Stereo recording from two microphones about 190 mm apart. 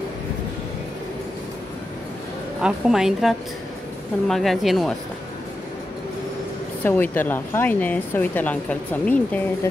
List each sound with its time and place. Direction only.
2.6 s a woman's voice: centre (ahead or behind)
6.8 s speech: 10° left (ahead or behind)